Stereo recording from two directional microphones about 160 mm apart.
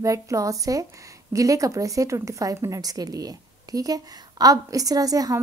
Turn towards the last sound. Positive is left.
turn(degrees=-20)  # may be behind; listen again after turning